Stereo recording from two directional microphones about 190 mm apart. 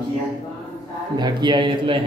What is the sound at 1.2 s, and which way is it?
Speech, 25° right (ahead or behind).